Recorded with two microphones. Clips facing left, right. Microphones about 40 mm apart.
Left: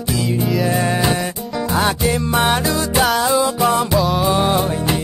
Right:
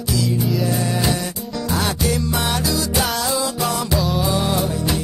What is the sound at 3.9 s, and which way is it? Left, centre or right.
Music, centre.